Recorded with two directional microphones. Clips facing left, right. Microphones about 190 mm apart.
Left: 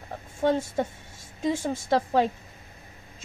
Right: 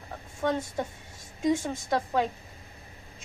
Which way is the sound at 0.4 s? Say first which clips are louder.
Left 4 dB; 25° left (ahead or behind).